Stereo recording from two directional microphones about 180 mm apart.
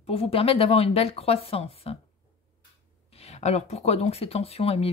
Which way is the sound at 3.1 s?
35° left (ahead or behind).